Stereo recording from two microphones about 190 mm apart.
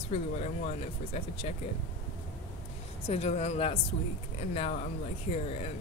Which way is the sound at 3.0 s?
35° left (ahead or behind).